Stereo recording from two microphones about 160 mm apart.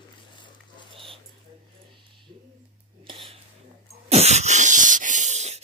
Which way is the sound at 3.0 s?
30° right (ahead or behind).